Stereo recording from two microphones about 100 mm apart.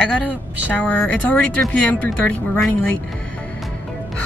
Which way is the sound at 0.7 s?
15° left (ahead or behind).